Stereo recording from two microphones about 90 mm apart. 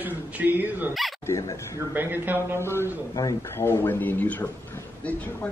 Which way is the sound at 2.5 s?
30° left (ahead or behind).